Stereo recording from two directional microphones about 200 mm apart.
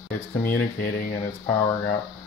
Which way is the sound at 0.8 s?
45° left (ahead or behind).